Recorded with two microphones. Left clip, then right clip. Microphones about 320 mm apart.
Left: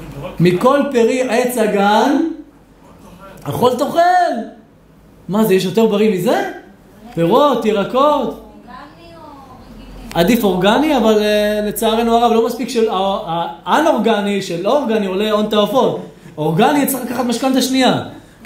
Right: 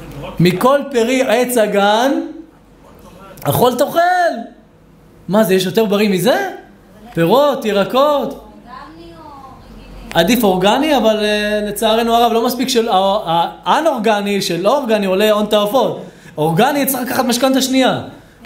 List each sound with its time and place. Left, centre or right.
0.4 s speech: right
3.4 s speech: right
5.3 s speech: centre
10.0 s speech: centre